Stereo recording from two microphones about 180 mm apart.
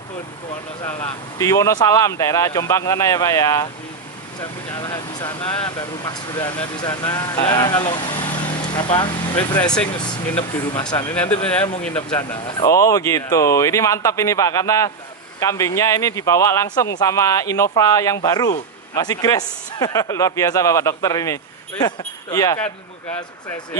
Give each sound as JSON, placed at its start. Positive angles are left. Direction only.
{"t": 0.9, "sound": "speech", "side_deg": 20}
{"t": 4.7, "sound": "speech", "side_deg": 20}
{"t": 8.4, "sound": "vehicle", "side_deg": 25}
{"t": 9.9, "sound": "speech", "side_deg": 25}
{"t": 11.8, "sound": "speech", "side_deg": 5}
{"t": 12.4, "sound": "speech", "side_deg": 20}